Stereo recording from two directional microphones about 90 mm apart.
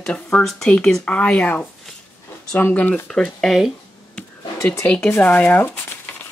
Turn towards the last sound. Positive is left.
turn(degrees=20)  # may be behind; listen again after turning